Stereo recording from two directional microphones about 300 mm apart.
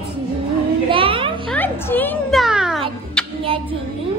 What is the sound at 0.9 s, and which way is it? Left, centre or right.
Children playing, centre.